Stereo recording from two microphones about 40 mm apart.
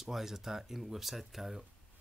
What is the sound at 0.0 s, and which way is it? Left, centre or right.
Speech, centre.